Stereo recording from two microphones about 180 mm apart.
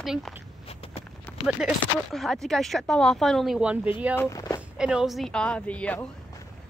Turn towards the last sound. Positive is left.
turn(degrees=5)  # may be behind; listen again after turning